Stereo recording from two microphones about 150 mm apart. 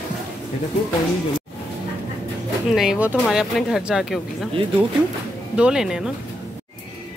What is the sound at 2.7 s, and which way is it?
Speech, 5° right (ahead or behind).